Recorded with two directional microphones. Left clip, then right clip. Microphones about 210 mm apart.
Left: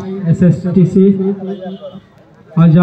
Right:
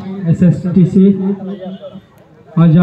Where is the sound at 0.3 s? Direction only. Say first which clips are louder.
Even; 25° left (ahead or behind).